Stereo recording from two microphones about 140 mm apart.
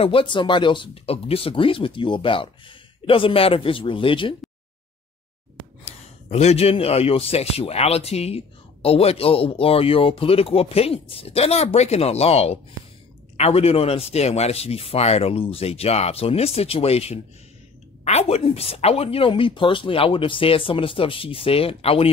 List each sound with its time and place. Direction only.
0.0 s speech: 40° left (ahead or behind)
5.9 s a man's voice: 50° left (ahead or behind)